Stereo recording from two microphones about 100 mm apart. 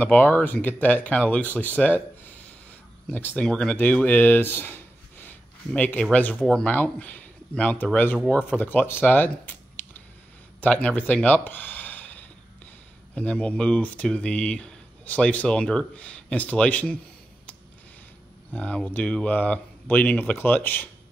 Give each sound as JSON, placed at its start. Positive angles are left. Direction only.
{"t": 0.0, "sound": "speech", "side_deg": 20}
{"t": 3.4, "sound": "speech", "side_deg": 10}
{"t": 18.5, "sound": "speech", "side_deg": 15}